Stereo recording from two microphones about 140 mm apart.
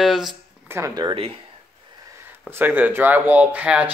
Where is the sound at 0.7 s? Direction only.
20° right (ahead or behind).